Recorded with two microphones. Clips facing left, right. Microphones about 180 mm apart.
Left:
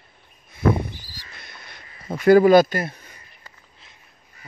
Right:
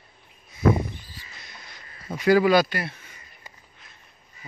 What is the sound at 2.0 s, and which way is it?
Speech, 50° left (ahead or behind).